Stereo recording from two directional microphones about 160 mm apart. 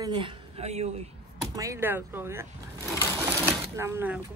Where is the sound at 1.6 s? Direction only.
15° right (ahead or behind).